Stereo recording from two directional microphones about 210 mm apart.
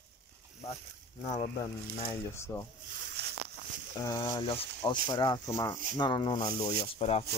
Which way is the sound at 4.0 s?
20° left (ahead or behind).